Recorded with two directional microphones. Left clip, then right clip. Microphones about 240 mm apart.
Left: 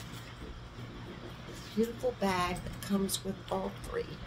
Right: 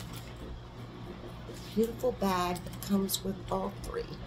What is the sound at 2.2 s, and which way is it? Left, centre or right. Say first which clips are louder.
Speech: right 1 dB; right.